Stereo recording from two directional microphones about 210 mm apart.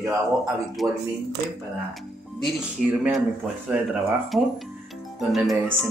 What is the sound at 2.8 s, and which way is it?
Speech, centre (ahead or behind).